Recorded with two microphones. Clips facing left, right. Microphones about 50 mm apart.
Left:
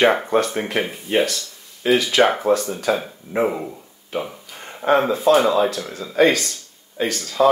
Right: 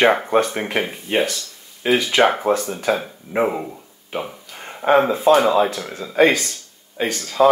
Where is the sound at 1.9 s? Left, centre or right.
Right.